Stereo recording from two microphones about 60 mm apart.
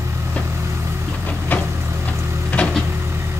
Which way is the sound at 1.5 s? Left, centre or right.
Left.